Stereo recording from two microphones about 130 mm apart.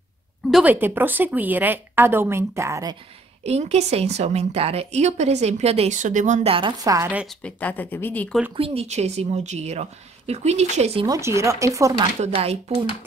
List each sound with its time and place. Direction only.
0.5 s a woman's voice: 5° right (ahead or behind)
0.7 s speech: 15° right (ahead or behind)
3.4 s speech: 55° right (ahead or behind)
5.9 s speech: 75° right (ahead or behind)
6.4 s speech: 45° right (ahead or behind)
6.8 s speech: 25° right (ahead or behind)
7.2 s speech: 10° left (ahead or behind)
8.5 s speech: 50° right (ahead or behind)
11.1 s speech: 20° right (ahead or behind)
12.4 s speech: 50° right (ahead or behind)